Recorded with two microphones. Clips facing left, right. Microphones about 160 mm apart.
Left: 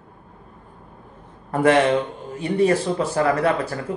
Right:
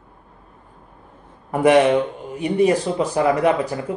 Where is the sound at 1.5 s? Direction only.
15° right (ahead or behind).